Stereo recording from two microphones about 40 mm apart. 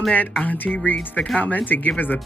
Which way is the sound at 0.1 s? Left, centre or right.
Left.